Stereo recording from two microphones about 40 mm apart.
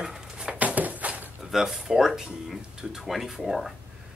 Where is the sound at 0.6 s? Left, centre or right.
Right.